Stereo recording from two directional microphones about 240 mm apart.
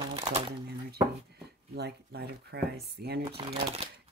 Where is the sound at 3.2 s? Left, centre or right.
Right.